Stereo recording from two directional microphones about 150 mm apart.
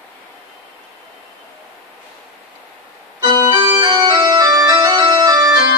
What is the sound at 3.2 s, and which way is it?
Organ, 25° right (ahead or behind).